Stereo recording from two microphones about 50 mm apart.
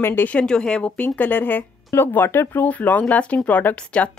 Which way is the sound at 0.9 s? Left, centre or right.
Left.